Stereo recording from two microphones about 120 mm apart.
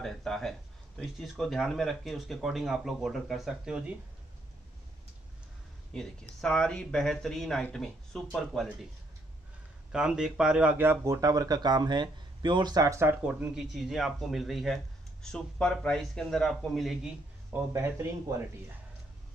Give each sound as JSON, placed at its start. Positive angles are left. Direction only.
{"t": 0.0, "sound": "speech", "side_deg": 5}
{"t": 5.9, "sound": "speech", "side_deg": 5}
{"t": 9.9, "sound": "speech", "side_deg": -5}
{"t": 11.1, "sound": "speech", "side_deg": -30}
{"t": 13.2, "sound": "speech", "side_deg": -10}
{"t": 17.5, "sound": "speech", "side_deg": -20}